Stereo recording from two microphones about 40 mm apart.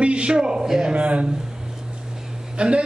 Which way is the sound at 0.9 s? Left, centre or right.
Right.